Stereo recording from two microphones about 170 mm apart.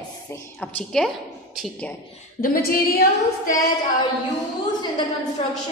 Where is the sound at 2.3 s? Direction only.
60° left (ahead or behind).